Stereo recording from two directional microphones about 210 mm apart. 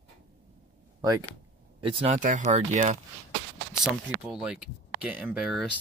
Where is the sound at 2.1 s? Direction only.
35° right (ahead or behind).